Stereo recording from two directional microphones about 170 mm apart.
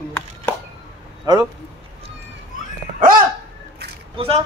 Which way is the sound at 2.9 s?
55° right (ahead or behind).